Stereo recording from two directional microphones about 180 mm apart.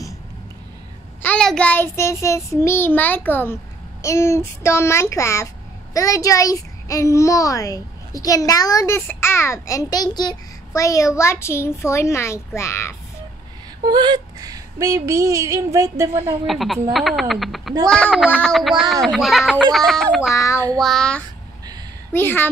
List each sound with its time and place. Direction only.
1.2 s a child's voice: 5° left (ahead or behind)
13.8 s speech: 25° right (ahead or behind)
16.4 s speech: centre (ahead or behind)
20.3 s a child's voice: 15° left (ahead or behind)
20.8 s a child's voice: 5° left (ahead or behind)